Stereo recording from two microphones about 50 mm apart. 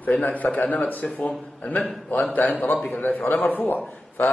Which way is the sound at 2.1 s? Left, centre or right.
Left.